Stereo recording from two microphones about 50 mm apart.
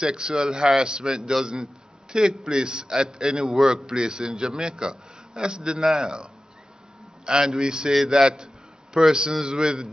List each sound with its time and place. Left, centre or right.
0.0 s a man's voice: centre
7.2 s a man's voice: centre